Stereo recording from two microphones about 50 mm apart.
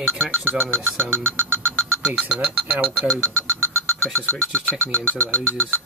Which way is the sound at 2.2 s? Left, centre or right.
Right.